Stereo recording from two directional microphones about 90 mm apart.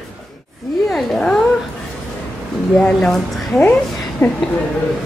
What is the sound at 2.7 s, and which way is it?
A woman's voice, 15° left (ahead or behind).